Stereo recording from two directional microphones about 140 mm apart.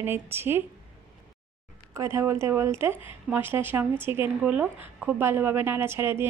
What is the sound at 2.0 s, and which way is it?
A woman's voice, 20° right (ahead or behind).